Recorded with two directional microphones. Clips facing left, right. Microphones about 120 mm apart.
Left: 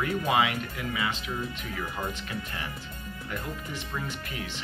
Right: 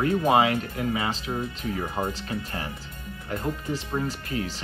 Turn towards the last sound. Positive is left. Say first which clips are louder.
# right 6 dB
turn(degrees=-35)  # may be behind; listen again after turning